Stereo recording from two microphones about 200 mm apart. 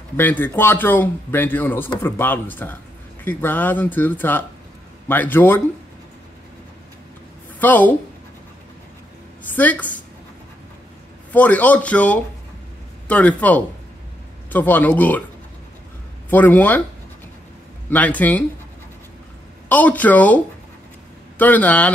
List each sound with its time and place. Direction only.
0.2 s speech: 10° left (ahead or behind)
7.6 s speech: 10° left (ahead or behind)
9.6 s speech: 5° left (ahead or behind)
11.3 s speech: 10° left (ahead or behind)
16.3 s speech: 10° left (ahead or behind)
17.8 s speech: 10° left (ahead or behind)
19.7 s speech: 10° left (ahead or behind)